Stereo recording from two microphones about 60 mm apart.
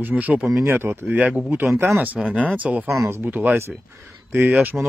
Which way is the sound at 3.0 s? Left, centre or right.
Right.